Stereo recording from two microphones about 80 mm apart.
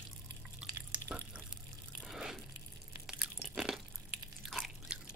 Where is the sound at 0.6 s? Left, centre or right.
Centre.